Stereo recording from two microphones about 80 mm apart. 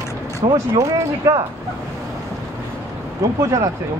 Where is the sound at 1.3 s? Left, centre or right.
Right.